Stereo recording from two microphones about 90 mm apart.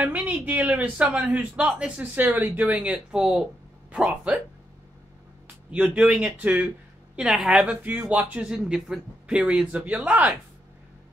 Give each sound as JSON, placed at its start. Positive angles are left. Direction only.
{"t": 0.0, "sound": "speech", "side_deg": -15}
{"t": 5.7, "sound": "speech", "side_deg": -15}
{"t": 7.7, "sound": "speech", "side_deg": -15}